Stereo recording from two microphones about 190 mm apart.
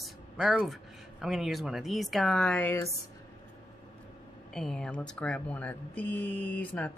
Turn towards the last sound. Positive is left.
turn(degrees=10)  # may be behind; listen again after turning